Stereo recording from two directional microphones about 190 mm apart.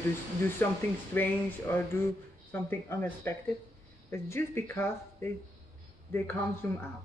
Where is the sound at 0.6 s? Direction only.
10° left (ahead or behind).